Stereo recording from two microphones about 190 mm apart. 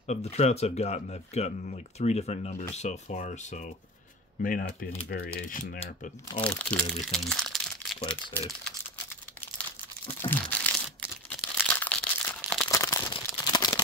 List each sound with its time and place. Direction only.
0.0 s speech: 35° left (ahead or behind)
6.4 s speech: 5° left (ahead or behind)
7.1 s crumpling: centre (ahead or behind)
8.1 s speech: 10° left (ahead or behind)
10.2 s crumpling: 10° left (ahead or behind)
12.7 s a sound: 15° left (ahead or behind)